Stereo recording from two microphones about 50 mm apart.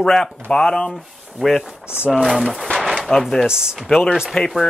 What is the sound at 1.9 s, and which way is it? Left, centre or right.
Speech, centre.